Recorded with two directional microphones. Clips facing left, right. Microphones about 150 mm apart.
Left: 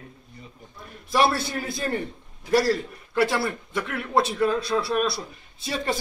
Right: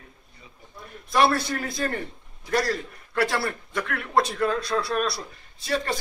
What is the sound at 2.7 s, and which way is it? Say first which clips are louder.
A man's voice: left 4 dB; 25° left (ahead or behind).